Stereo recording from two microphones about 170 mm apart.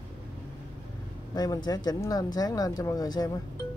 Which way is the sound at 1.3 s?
20° left (ahead or behind).